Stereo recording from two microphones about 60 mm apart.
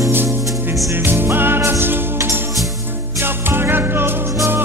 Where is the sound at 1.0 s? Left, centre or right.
Right.